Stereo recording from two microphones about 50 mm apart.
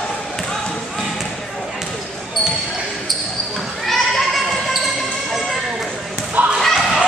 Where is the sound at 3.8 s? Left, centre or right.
Centre.